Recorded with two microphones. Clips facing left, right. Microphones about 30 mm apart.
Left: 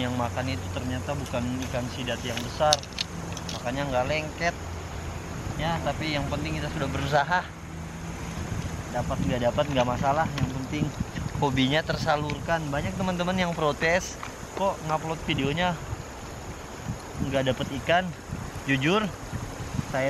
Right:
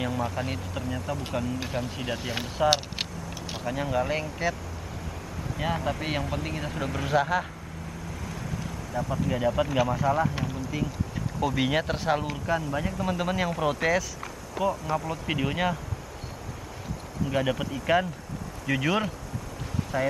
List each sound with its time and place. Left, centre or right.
0.0 s speech: centre
1.7 s speech: centre
2.1 s speech: right
2.7 s keys jangling: centre
3.6 s speech: centre
5.9 s speech: centre
8.9 s speech: centre
14.5 s speech: centre
17.3 s speech: centre